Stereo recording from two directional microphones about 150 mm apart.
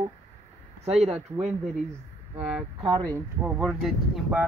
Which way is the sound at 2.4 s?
5° right (ahead or behind).